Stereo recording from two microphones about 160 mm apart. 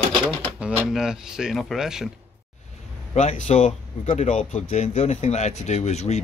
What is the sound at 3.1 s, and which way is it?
Speech, 50° left (ahead or behind).